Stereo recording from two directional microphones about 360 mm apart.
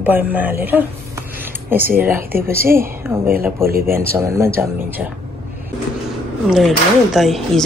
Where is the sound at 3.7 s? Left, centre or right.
Right.